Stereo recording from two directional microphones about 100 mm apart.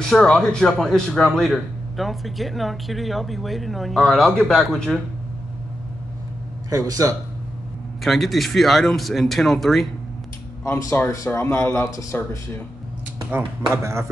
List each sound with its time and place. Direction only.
0.0 s speech: 5° left (ahead or behind)
6.7 s speech: 35° right (ahead or behind)
8.0 s speech: centre (ahead or behind)
10.6 s speech: 30° left (ahead or behind)